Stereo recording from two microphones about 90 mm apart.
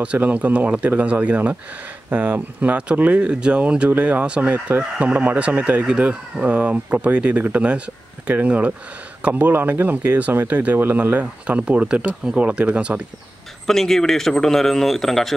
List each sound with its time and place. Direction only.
0.0 s speech: 15° right (ahead or behind)
13.7 s a man's voice: 5° left (ahead or behind)